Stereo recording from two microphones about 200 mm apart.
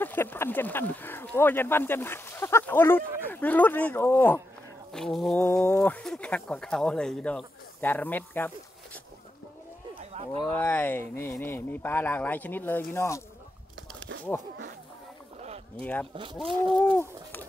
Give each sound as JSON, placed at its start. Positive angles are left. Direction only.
{"t": 0.0, "sound": "speech", "side_deg": 10}
{"t": 9.9, "sound": "livestock", "side_deg": -30}
{"t": 10.5, "sound": "speech", "side_deg": 10}
{"t": 13.9, "sound": "a sound", "side_deg": -70}
{"t": 15.8, "sound": "speech", "side_deg": 5}